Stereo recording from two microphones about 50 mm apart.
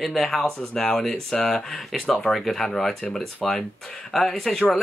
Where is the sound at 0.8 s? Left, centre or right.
Centre.